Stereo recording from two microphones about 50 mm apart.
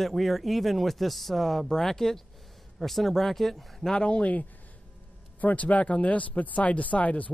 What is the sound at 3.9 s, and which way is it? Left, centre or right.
Speech, left.